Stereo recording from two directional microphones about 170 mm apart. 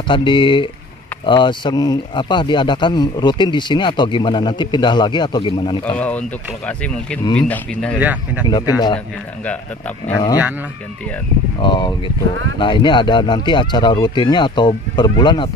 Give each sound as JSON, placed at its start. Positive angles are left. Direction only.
{"t": 0.1, "sound": "speech", "side_deg": 30}
{"t": 5.9, "sound": "speech", "side_deg": 10}
{"t": 8.0, "sound": "speech", "side_deg": -10}
{"t": 8.5, "sound": "speech", "side_deg": 25}
{"t": 11.6, "sound": "speech", "side_deg": 25}